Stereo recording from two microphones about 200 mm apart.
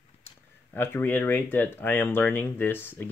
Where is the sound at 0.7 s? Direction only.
10° left (ahead or behind).